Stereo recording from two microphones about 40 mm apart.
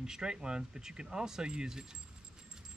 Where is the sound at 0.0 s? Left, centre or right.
Centre.